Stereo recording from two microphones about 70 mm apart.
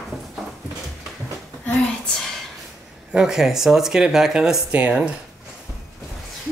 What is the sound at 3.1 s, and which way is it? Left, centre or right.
Speech, centre.